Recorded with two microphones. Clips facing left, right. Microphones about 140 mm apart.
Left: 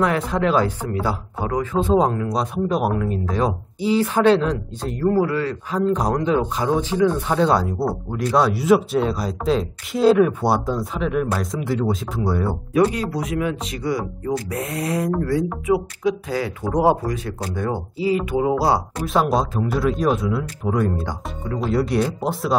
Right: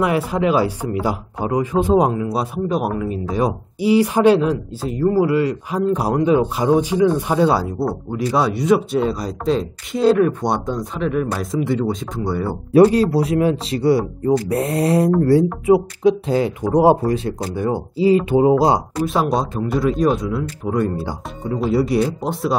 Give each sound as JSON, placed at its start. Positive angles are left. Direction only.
{"t": 0.0, "sound": "speech", "side_deg": -10}
{"t": 12.7, "sound": "speech", "side_deg": -30}
{"t": 17.6, "sound": "speech", "side_deg": -10}
{"t": 18.9, "sound": "speech", "side_deg": 0}